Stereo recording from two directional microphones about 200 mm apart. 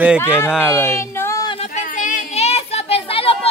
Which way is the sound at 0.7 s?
10° left (ahead or behind).